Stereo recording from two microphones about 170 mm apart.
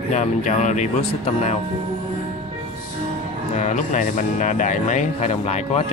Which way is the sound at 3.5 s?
45° left (ahead or behind).